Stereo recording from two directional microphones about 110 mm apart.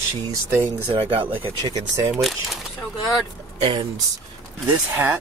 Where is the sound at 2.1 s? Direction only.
Centre (ahead or behind).